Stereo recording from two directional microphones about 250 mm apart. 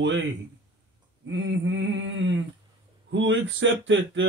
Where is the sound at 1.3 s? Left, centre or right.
Right.